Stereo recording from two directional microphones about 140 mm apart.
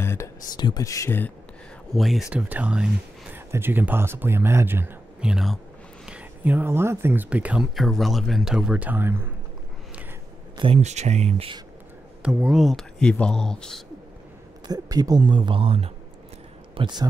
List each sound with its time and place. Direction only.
0.0 s a sound: 20° left (ahead or behind)
0.6 s speech: 30° left (ahead or behind)
2.0 s speech: centre (ahead or behind)
10.6 s speech: 45° right (ahead or behind)
12.2 s speech: 5° right (ahead or behind)
14.7 s speech: 25° right (ahead or behind)